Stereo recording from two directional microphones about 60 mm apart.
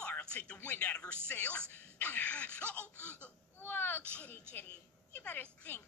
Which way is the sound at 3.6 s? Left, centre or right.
Left.